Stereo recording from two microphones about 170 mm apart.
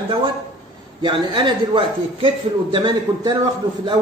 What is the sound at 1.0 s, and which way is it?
A man's voice, 30° right (ahead or behind).